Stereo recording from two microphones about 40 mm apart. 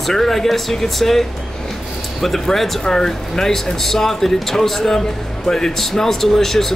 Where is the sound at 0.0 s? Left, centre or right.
Centre.